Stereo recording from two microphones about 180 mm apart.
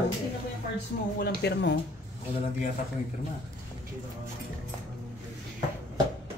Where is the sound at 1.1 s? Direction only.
65° left (ahead or behind).